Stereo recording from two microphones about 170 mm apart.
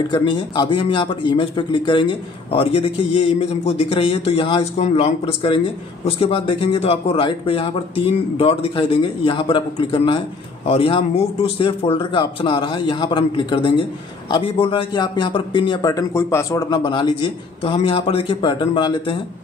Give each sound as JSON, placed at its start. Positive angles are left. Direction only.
{"t": 0.1, "sound": "a man's voice", "side_deg": 25}